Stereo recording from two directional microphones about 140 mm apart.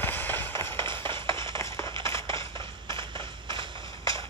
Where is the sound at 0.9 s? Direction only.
35° right (ahead or behind).